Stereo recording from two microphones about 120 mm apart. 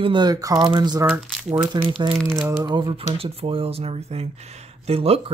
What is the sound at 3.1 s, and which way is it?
Speech, 50° right (ahead or behind).